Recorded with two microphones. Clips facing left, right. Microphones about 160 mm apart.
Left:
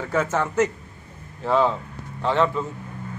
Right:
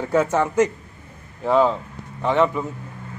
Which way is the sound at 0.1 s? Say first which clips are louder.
Right 4 dB; 10° right (ahead or behind).